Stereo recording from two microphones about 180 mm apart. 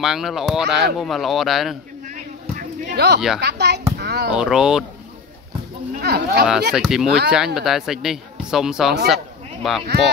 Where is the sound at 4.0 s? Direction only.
65° right (ahead or behind).